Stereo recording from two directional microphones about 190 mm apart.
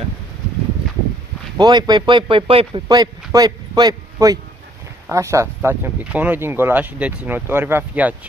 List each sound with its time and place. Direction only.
1.6 s a man's voice: 20° right (ahead or behind)